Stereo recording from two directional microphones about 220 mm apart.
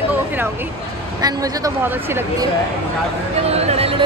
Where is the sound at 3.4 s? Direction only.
30° right (ahead or behind).